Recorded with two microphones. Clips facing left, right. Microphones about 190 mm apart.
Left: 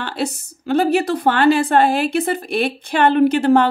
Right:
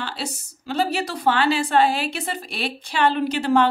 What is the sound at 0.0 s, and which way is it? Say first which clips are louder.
A woman's voice: left 7 dB; 55° left (ahead or behind).